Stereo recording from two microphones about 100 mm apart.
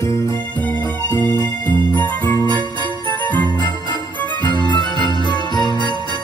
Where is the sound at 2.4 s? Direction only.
50° right (ahead or behind).